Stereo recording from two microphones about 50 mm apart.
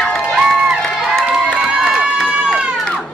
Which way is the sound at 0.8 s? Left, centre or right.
Centre.